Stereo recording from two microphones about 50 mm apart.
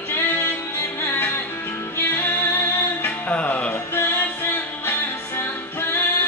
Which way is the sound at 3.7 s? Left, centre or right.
Left.